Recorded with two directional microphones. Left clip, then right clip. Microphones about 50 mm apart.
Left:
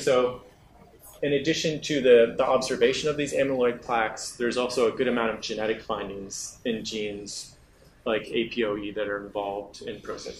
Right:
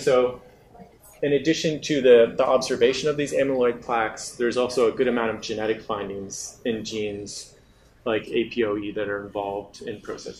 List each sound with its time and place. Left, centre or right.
0.0 s a man's voice: centre
8.0 s speech: centre